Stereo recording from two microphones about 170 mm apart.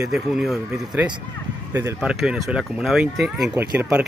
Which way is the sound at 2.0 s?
5° right (ahead or behind).